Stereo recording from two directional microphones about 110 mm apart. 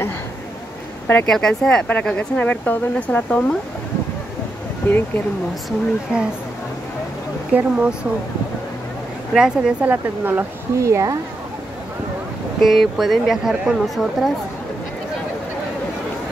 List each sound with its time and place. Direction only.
1.0 s speech: 10° left (ahead or behind)
4.8 s speech: 15° left (ahead or behind)
7.5 s speech: 10° right (ahead or behind)
9.3 s speech: 5° right (ahead or behind); by 11.1 s 30° right (ahead or behind)
12.6 s speech: centre (ahead or behind)